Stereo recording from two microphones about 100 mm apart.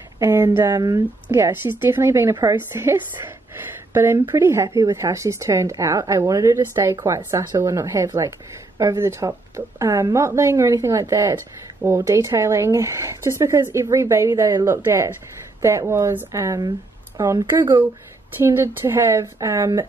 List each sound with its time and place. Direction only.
0.2 s a woman's voice: 25° right (ahead or behind)
0.7 s a woman's voice: 35° right (ahead or behind)
1.3 s a woman's voice: 25° right (ahead or behind)
18.4 s a woman's voice: 20° right (ahead or behind)